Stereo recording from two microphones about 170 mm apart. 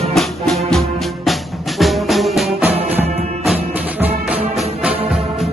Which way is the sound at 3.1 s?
40° right (ahead or behind).